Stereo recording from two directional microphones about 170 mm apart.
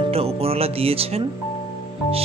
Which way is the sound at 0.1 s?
35° right (ahead or behind).